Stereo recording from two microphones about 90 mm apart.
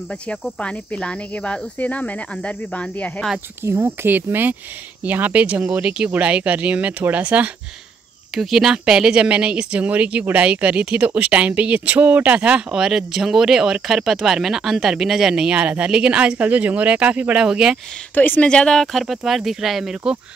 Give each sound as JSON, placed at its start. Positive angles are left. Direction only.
{"t": 0.3, "sound": "speech", "side_deg": 10}
{"t": 3.6, "sound": "speech", "side_deg": -25}
{"t": 8.4, "sound": "speech", "side_deg": -5}
{"t": 18.1, "sound": "speech", "side_deg": 20}